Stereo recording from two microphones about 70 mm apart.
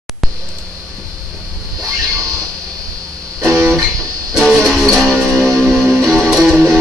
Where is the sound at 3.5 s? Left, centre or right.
Right.